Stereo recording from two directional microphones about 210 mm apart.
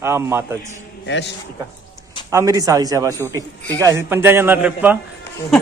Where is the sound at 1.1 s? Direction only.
55° left (ahead or behind).